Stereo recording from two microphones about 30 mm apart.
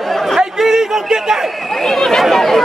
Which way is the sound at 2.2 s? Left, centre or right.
Centre.